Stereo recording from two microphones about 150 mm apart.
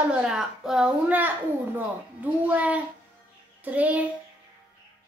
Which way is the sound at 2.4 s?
10° right (ahead or behind).